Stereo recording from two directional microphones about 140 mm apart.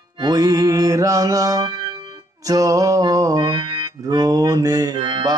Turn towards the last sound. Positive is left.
turn(degrees=-30)  # may be behind; listen again after turning